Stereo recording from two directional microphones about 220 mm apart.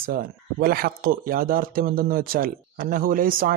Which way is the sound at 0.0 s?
40° right (ahead or behind).